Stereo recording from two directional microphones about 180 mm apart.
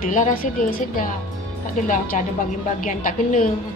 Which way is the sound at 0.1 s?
50° left (ahead or behind).